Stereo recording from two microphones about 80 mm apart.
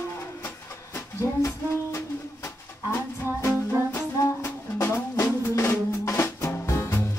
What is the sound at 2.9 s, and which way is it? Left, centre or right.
Music, left.